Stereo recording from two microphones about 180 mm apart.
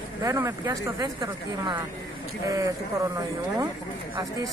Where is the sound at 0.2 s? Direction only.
15° right (ahead or behind).